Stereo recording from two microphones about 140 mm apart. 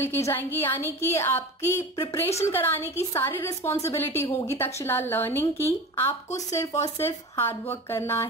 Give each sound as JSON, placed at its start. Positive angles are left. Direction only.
{"t": 0.0, "sound": "a woman's voice", "side_deg": 15}